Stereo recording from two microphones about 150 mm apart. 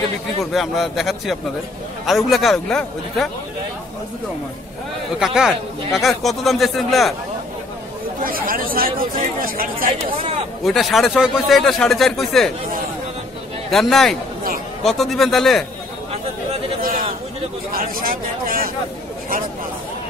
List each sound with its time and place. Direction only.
0.5 s speech: centre (ahead or behind)
5.2 s speech: 5° right (ahead or behind)
8.2 s speech: 70° right (ahead or behind)
9.8 s speech: 40° right (ahead or behind)
10.6 s speech: centre (ahead or behind)
13.7 s speech: centre (ahead or behind)
16.8 s a sound: 75° right (ahead or behind)
17.7 s speech: 75° right (ahead or behind)